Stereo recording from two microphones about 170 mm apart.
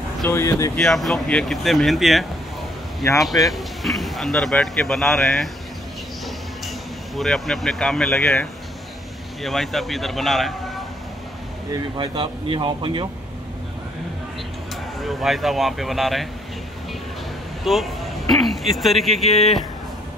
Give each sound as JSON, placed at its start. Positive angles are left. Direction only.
{"t": 0.3, "sound": "speech", "side_deg": 15}
{"t": 0.7, "sound": "speech", "side_deg": 0}
{"t": 3.5, "sound": "speech", "side_deg": 0}
{"t": 7.2, "sound": "speech", "side_deg": 0}
{"t": 11.7, "sound": "speech", "side_deg": -25}
{"t": 15.0, "sound": "speech", "side_deg": 0}
{"t": 17.7, "sound": "speech", "side_deg": 0}
{"t": 19.2, "sound": "a man's voice", "side_deg": 40}